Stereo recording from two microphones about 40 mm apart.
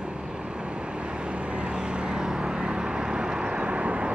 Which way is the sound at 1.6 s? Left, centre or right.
Right.